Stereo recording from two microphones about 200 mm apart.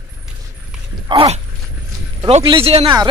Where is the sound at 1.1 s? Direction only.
25° right (ahead or behind).